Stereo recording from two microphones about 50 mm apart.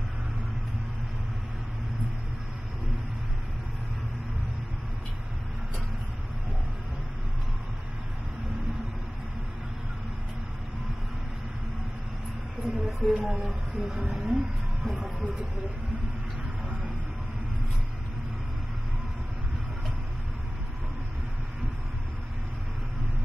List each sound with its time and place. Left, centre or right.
12.6 s speech: centre